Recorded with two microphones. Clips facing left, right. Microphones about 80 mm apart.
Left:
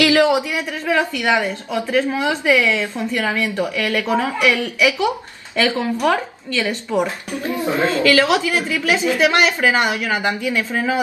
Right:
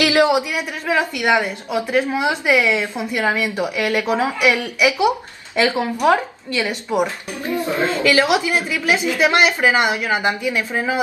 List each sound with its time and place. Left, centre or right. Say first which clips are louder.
0.0 s a man's voice: left 1 dB; centre